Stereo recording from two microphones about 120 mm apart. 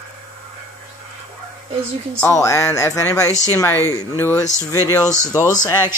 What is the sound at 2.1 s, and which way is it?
Speech, 20° left (ahead or behind).